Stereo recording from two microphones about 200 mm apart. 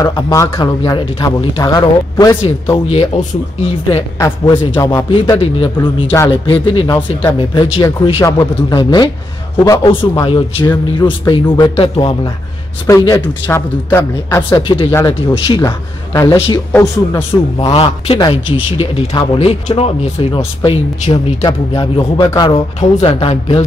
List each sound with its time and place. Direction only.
0.0 s a man's voice: 15° left (ahead or behind)
4.7 s a man's voice: 15° left (ahead or behind)
11.4 s speech: 10° left (ahead or behind)
11.7 s a man's voice: 25° left (ahead or behind)